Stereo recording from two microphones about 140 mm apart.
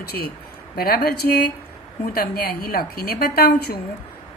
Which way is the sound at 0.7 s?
90° left.